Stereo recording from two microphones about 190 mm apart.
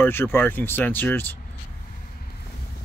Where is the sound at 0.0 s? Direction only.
10° left (ahead or behind).